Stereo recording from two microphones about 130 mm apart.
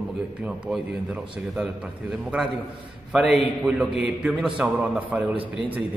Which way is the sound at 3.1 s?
5° right (ahead or behind).